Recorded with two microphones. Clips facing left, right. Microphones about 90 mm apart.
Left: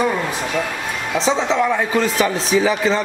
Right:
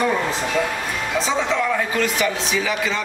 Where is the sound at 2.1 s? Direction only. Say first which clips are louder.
Left 5 dB; 35° left (ahead or behind).